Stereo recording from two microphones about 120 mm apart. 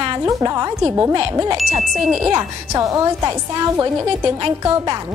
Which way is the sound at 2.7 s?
25° right (ahead or behind).